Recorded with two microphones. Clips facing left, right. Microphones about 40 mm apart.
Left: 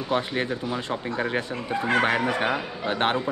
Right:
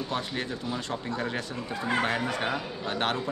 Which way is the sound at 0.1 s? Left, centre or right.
Left.